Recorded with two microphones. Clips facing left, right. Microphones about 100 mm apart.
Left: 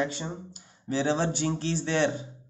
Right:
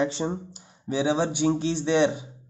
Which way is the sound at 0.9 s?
15° right (ahead or behind).